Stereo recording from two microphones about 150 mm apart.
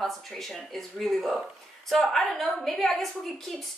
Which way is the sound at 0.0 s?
Centre (ahead or behind).